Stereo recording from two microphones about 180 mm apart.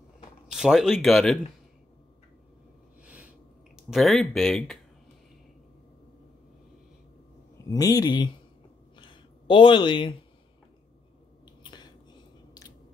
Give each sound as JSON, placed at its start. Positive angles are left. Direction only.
{"t": 0.5, "sound": "speech", "side_deg": -5}
{"t": 3.0, "sound": "a sound", "side_deg": -5}
{"t": 3.9, "sound": "speech", "side_deg": 0}
{"t": 7.5, "sound": "speech", "side_deg": 20}
{"t": 8.9, "sound": "a sound", "side_deg": 25}
{"t": 11.4, "sound": "biting", "side_deg": 25}